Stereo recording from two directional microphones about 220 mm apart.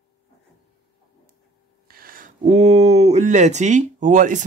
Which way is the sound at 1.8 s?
40° right (ahead or behind).